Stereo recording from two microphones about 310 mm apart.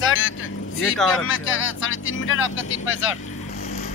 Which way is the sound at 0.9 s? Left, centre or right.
Centre.